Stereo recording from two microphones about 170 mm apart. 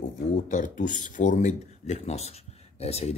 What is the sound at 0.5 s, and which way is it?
Speech, 50° left (ahead or behind).